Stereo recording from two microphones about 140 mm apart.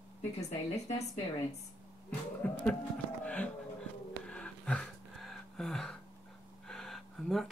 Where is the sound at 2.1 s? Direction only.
10° left (ahead or behind).